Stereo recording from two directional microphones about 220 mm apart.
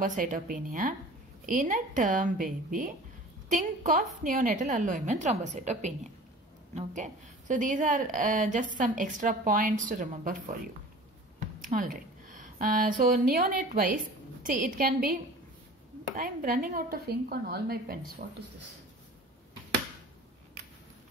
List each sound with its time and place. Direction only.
0.0 s a woman's voice: 35° right (ahead or behind)
11.6 s a woman's voice: 40° right (ahead or behind)
16.2 s a woman's voice: 40° right (ahead or behind)